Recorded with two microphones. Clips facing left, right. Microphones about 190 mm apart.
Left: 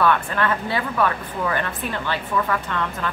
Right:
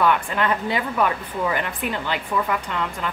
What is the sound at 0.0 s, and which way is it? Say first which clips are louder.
Speech: even; 15° right (ahead or behind).